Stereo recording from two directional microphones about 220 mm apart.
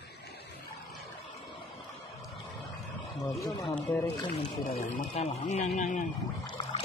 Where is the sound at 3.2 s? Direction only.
15° left (ahead or behind).